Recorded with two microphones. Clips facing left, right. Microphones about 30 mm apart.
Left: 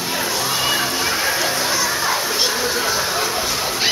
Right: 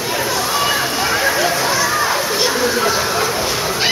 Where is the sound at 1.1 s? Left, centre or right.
Right.